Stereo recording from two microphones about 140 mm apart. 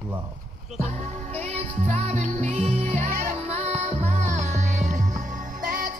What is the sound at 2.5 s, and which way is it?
Music, 50° right (ahead or behind).